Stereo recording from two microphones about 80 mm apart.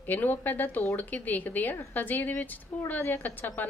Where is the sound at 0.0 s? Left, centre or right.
Left.